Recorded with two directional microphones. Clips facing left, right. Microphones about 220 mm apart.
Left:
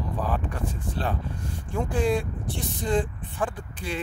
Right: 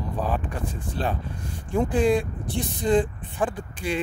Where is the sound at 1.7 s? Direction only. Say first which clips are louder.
Right 4 dB; 15° right (ahead or behind).